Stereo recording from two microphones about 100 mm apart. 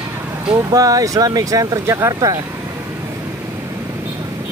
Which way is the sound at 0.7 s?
35° right (ahead or behind).